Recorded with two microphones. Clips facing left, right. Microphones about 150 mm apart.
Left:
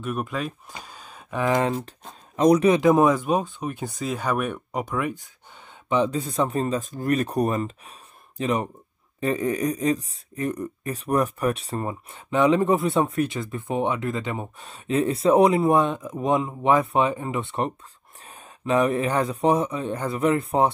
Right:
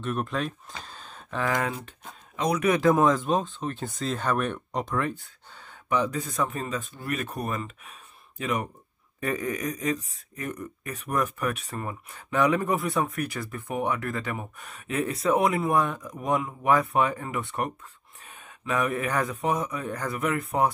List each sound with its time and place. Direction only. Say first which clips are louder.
0.0 s speech: left 1 dB; 5° left (ahead or behind)
1.4 s speech: left 6 dB; 25° left (ahead or behind)
2.3 s speech: left 8 dB; 40° left (ahead or behind)
2.7 s speech: left 3 dB; 15° left (ahead or behind)
18.2 s a sound: left 4 dB; 35° left (ahead or behind)
18.7 s speech: left 6 dB; 30° left (ahead or behind)